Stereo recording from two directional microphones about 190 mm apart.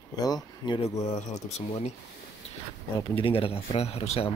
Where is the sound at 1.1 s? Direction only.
35° left (ahead or behind).